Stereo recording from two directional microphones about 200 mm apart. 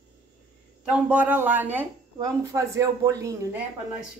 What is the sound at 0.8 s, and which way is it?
Speech, 5° right (ahead or behind).